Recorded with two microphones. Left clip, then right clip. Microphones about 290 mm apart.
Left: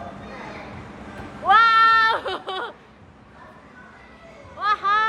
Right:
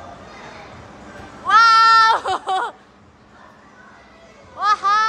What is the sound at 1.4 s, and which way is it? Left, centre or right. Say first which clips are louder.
Cat: right 3 dB; centre.